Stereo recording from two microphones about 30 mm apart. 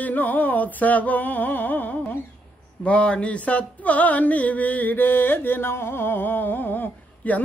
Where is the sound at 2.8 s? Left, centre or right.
Left.